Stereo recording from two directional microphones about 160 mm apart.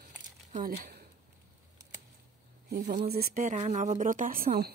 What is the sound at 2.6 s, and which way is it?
Speech, 65° right (ahead or behind).